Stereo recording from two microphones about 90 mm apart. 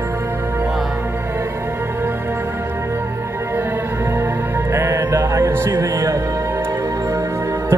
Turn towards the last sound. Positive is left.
turn(degrees=-30)  # may be behind; listen again after turning